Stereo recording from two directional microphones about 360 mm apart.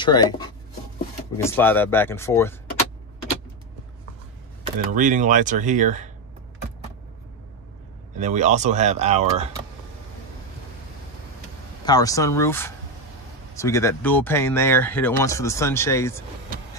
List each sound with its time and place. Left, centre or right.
0.0 s speech: centre
1.4 s speech: centre
4.7 s speech: right
8.2 s speech: centre
11.8 s speech: centre